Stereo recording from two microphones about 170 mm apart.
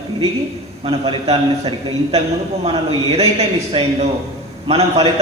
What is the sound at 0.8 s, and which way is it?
Speech, 35° right (ahead or behind).